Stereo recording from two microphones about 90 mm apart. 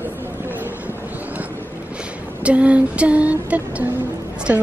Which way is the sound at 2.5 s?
15° right (ahead or behind).